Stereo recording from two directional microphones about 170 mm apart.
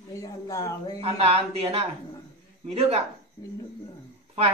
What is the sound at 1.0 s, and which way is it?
Speech, 35° right (ahead or behind).